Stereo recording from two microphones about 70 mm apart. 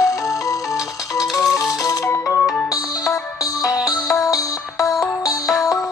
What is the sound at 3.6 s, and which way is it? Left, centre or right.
Music, left.